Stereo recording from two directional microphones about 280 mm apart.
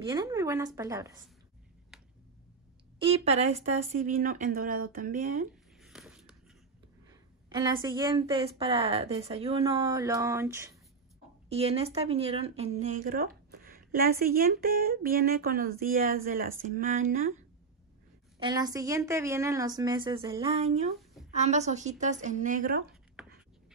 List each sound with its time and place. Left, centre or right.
0.0 s a woman's voice: centre
3.0 s speech: right
5.8 s a sound: centre
7.4 s a woman's voice: centre
11.4 s speech: right
18.4 s a woman's voice: centre; by 22.8 s right